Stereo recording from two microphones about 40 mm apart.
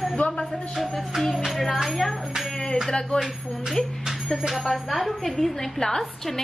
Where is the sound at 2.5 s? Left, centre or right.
Centre.